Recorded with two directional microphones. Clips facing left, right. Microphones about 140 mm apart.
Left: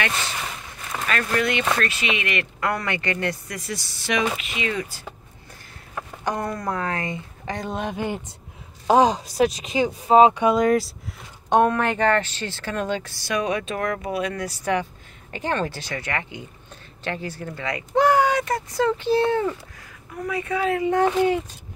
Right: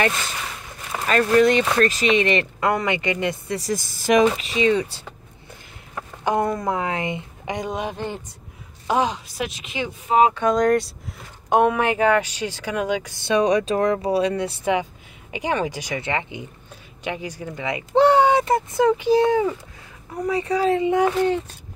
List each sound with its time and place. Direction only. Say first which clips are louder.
1.0 s speech: right 8 dB; 35° right (ahead or behind)
3.5 s speech: right 7 dB; 40° right (ahead or behind)
4.4 s speech: right 8 dB; 30° right (ahead or behind)
6.2 s speech: right 5 dB; 20° right (ahead or behind)
7.9 s speech: left 2 dB; 10° left (ahead or behind)
8.8 s speech: left 5 dB; 35° left (ahead or behind)
10.3 s speech: even; 10° left (ahead or behind); by 13.1 s 10° right (ahead or behind)
13.2 s speech: right 8 dB; 30° right (ahead or behind); by 19.5 s 10° right (ahead or behind)
20.2 s speech: right 4 dB; 30° right (ahead or behind)